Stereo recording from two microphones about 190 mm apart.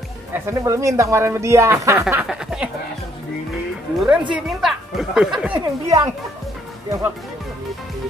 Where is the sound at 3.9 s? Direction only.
5° right (ahead or behind).